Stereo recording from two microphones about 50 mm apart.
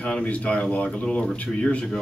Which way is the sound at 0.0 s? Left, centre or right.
Left.